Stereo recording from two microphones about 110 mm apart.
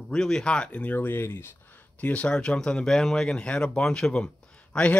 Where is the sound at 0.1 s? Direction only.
5° left (ahead or behind).